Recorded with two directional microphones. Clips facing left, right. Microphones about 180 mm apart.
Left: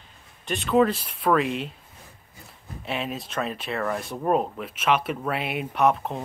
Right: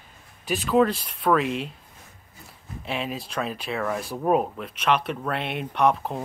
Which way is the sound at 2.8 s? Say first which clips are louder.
Even; centre (ahead or behind).